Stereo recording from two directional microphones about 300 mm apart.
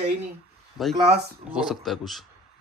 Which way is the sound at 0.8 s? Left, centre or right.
Centre.